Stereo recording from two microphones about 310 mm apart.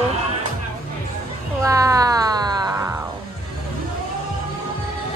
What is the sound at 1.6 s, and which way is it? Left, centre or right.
Music, centre.